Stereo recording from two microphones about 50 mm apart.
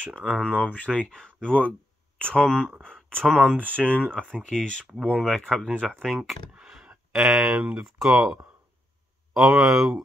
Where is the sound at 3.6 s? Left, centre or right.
Left.